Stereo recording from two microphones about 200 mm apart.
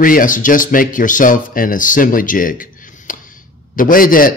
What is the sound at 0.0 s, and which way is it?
A man's voice, 45° left (ahead or behind).